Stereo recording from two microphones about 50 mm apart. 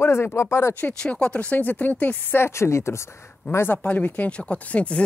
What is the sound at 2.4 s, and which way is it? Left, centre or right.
Speech, left.